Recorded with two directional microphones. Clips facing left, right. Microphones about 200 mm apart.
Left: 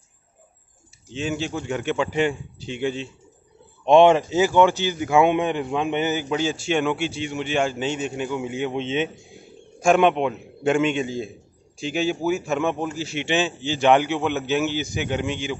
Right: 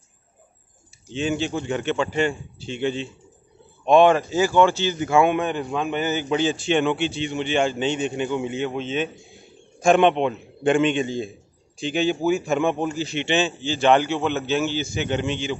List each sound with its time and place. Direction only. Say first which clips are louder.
1.1 s a man's voice: right 2 dB; 5° left (ahead or behind)
3.8 s a man's voice: left 1 dB; 25° left (ahead or behind)
6.1 s a man's voice: right 2 dB; 5° left (ahead or behind)
8.7 s a man's voice: left 1 dB; 25° left (ahead or behind)
9.8 s a man's voice: right 1 dB; 5° left (ahead or behind)